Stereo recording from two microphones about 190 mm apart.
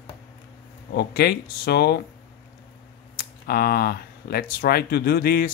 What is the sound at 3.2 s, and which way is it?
Speech, 55° left (ahead or behind).